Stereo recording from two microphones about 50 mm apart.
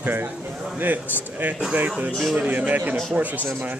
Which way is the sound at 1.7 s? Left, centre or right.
Right.